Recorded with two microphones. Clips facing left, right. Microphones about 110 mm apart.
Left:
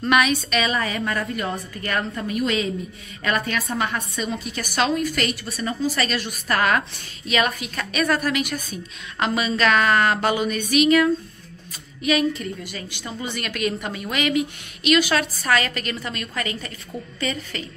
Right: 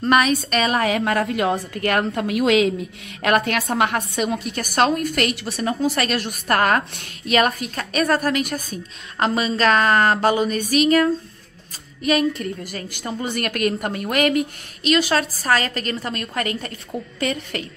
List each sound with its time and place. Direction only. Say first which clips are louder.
0.0 s a woman's voice: right 2 dB; 35° right (ahead or behind)
0.7 s a woman's voice: right 5 dB; 75° right (ahead or behind); by 2.7 s 90° right
3.2 s a woman's voice: right 5 dB; 70° right (ahead or behind); by 11.1 s 40° right (ahead or behind)
12.4 s a woman's voice: right 3 dB; 45° right (ahead or behind)
14.8 s a woman's voice: even; 30° right (ahead or behind); by 17.6 s 55° right (ahead or behind)